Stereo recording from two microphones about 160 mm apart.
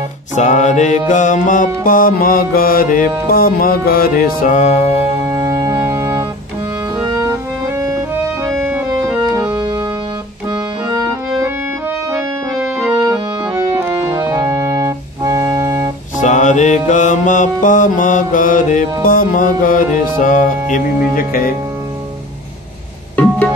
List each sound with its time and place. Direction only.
0.4 s music: 50° left (ahead or behind)
5.3 s organ: 25° right (ahead or behind)
8.6 s organ: 10° right (ahead or behind)
10.5 s accordion: 20° right (ahead or behind)
12.9 s organ: 20° right (ahead or behind)
16.2 s mantra: 50° left (ahead or behind)
19.0 s music: 60° left (ahead or behind)